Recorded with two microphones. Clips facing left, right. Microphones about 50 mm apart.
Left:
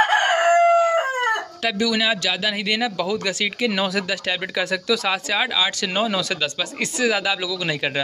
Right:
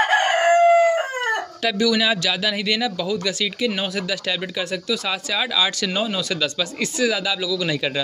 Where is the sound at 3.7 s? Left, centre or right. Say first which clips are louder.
Left 2 dB; left.